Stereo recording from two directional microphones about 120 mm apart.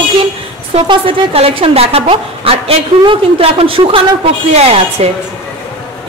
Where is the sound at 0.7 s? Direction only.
50° right (ahead or behind).